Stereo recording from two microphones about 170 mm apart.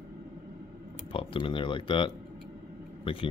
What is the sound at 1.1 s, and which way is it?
Speech, 30° left (ahead or behind).